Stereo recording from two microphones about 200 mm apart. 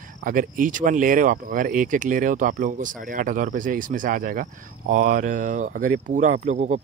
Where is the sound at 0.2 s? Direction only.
40° right (ahead or behind).